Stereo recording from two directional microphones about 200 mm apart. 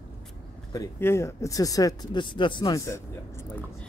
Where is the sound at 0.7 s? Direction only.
10° left (ahead or behind).